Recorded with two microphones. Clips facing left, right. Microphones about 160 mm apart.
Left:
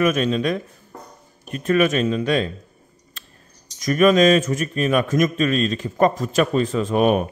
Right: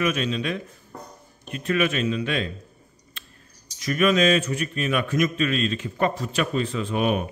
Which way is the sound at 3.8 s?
40° left (ahead or behind).